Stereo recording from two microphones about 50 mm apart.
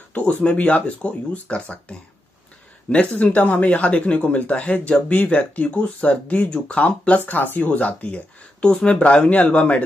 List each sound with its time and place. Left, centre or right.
0.1 s a sound: left
0.4 s speech: left
7.3 s speech: left